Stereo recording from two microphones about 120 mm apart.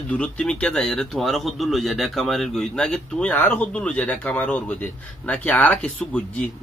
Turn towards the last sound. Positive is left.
turn(degrees=10)  # may be behind; listen again after turning